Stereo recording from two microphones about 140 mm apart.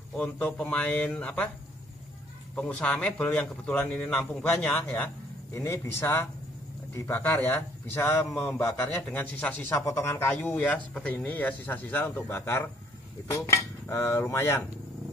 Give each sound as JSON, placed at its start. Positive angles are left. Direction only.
{"t": 0.1, "sound": "a man's voice", "side_deg": 10}
{"t": 2.5, "sound": "a man's voice", "side_deg": 10}
{"t": 13.3, "sound": "cutlery", "side_deg": 20}